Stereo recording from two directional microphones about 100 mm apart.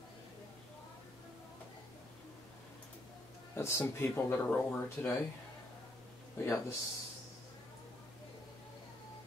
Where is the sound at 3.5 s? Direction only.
25° left (ahead or behind).